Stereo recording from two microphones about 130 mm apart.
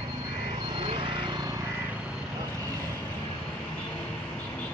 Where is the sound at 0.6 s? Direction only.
35° right (ahead or behind).